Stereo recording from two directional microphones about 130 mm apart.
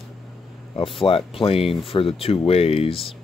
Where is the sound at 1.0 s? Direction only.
45° left (ahead or behind).